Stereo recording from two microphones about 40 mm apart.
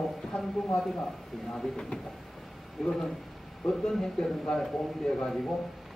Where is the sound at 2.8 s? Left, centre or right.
Centre.